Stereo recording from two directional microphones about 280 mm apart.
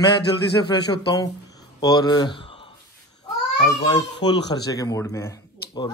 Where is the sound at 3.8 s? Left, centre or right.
Centre.